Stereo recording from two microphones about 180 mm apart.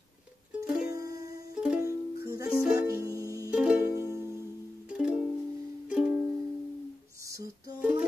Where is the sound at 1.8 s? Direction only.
20° right (ahead or behind).